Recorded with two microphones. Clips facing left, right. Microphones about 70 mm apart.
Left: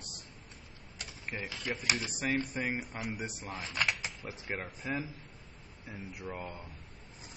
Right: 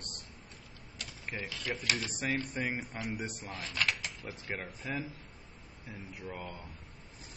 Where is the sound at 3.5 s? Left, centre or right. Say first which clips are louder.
Left 1 dB; centre.